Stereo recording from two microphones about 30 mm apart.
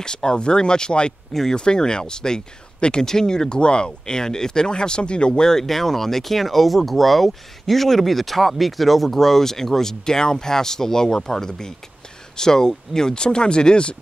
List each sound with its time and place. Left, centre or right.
0.0 s speech: left
5.6 s speech: centre; by 13.9 s left